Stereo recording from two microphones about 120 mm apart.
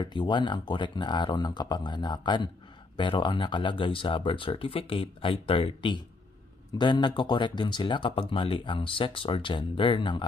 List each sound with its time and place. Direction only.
0.0 s speech: 40° left (ahead or behind)